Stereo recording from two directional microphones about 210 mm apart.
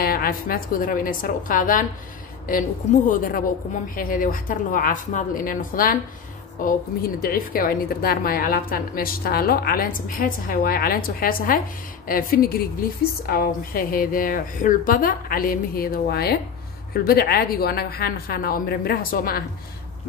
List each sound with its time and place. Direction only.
0.0 s speech: 45° left (ahead or behind)
3.1 s a woman's voice: 40° left (ahead or behind)